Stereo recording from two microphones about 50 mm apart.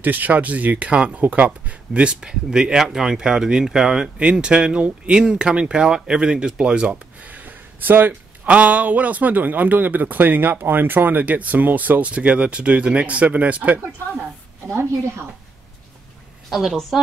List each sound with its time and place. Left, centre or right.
0.0 s speech: right
7.2 s gasp: right
8.1 s speech: right
14.7 s a woman's voice: right
16.4 s a woman's voice: centre